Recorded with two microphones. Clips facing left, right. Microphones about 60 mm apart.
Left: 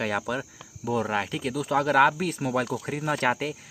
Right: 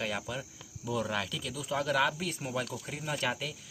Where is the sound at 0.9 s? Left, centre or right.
Left.